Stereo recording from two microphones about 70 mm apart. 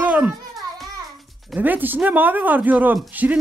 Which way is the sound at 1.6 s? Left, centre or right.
Right.